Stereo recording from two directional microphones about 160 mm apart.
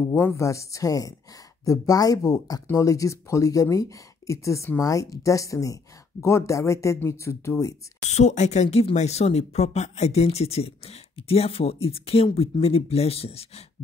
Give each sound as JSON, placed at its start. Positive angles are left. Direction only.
{"t": 0.0, "sound": "speech", "side_deg": 15}
{"t": 8.1, "sound": "speech", "side_deg": 45}